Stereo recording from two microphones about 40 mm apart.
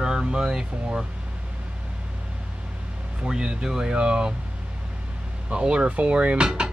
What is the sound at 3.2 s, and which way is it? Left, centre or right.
Speech, centre.